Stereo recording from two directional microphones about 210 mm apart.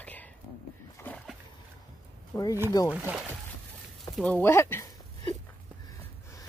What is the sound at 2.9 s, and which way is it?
Speech, 5° right (ahead or behind).